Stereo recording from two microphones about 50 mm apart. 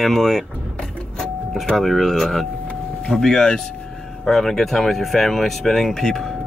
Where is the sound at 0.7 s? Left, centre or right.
Left.